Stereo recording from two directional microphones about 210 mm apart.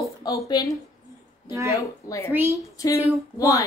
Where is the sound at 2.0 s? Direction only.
15° left (ahead or behind).